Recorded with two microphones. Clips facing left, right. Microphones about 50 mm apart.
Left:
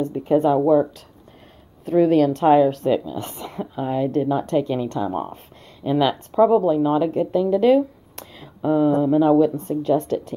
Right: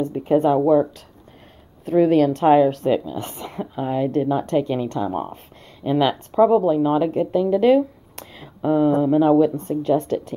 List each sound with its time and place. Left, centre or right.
0.1 s speech: right
0.7 s speech: centre